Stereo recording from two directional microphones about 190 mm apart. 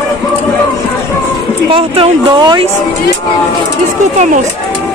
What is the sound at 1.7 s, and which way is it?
Speech, 30° right (ahead or behind).